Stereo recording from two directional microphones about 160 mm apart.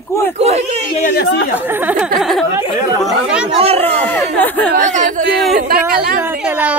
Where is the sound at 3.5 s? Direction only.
35° right (ahead or behind).